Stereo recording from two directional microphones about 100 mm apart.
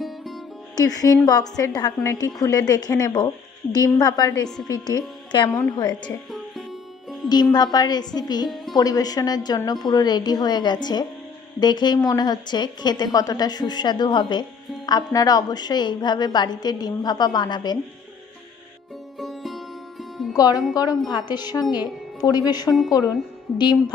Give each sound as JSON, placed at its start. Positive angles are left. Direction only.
{"t": 0.0, "sound": "music", "side_deg": 0}
{"t": 0.7, "sound": "a woman's voice", "side_deg": 40}
{"t": 7.5, "sound": "a woman's voice", "side_deg": 40}
{"t": 19.1, "sound": "music", "side_deg": 0}
{"t": 20.3, "sound": "a woman's voice", "side_deg": 35}